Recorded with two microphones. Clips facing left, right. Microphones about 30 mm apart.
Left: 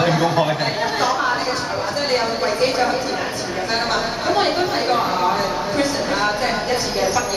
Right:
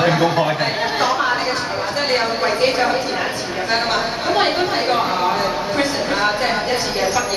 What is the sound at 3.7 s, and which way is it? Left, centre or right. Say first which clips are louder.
Speech: right 2 dB; centre.